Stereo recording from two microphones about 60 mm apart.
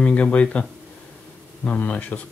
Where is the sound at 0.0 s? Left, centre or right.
Left.